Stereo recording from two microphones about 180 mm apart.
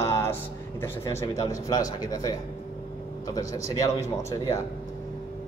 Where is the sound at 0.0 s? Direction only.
15° left (ahead or behind).